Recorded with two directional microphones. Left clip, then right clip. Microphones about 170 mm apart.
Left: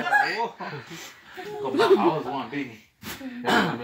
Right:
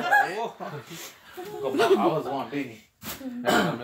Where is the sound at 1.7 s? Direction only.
Centre (ahead or behind).